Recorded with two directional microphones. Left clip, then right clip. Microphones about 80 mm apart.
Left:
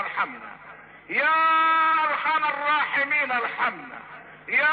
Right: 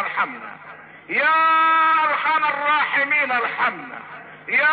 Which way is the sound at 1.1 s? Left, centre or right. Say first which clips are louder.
Right 4 dB; left.